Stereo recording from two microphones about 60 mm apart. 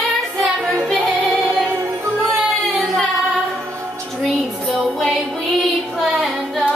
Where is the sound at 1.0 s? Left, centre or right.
Right.